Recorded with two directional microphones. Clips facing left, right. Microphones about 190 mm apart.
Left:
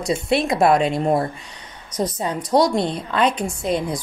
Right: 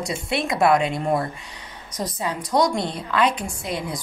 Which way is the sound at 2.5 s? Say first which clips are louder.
Left 4 dB; 35° left (ahead or behind).